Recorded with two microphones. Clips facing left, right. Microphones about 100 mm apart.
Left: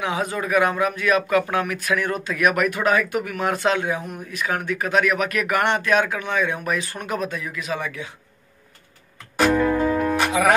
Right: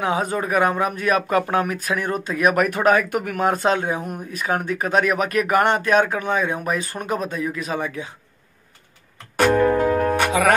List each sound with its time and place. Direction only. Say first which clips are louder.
0.0 s speech: right 3 dB; 40° right (ahead or behind)
9.5 s speech: right 3 dB; 35° right (ahead or behind)
9.8 s music: right 2 dB; 45° right (ahead or behind)